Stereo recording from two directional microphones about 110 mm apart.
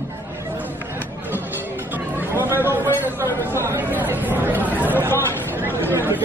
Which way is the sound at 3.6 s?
20° right (ahead or behind).